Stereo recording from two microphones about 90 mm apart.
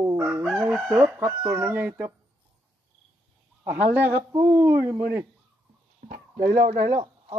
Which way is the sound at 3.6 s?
25° right (ahead or behind).